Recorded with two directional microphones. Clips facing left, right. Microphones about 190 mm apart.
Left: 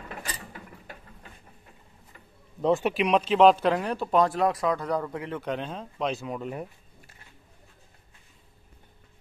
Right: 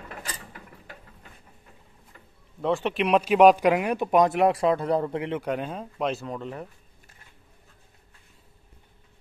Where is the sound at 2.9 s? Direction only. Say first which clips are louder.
Right 5 dB; 5° right (ahead or behind); by 5.4 s 25° right (ahead or behind).